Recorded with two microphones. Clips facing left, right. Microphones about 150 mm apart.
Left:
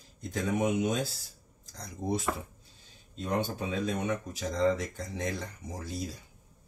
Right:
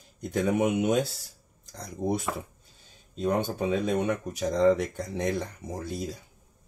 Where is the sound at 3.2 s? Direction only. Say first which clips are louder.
Right 5 dB; 55° right (ahead or behind).